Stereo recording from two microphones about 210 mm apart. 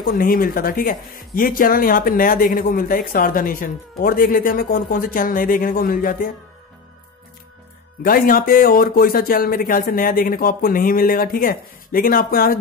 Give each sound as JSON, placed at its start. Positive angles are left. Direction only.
{"t": 0.0, "sound": "speech", "side_deg": 45}
{"t": 8.0, "sound": "speech", "side_deg": 40}